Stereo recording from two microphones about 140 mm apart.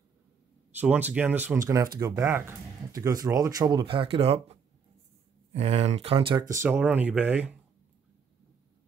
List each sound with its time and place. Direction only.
0.7 s speech: 10° right (ahead or behind); by 3.8 s 25° right (ahead or behind)
3.8 s speech: 40° right (ahead or behind)
6.5 s speech: 15° right (ahead or behind)